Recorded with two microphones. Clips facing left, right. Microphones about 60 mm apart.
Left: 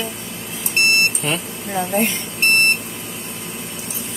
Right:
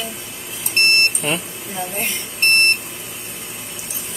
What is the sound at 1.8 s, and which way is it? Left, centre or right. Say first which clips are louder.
Speech: left 6 dB; left.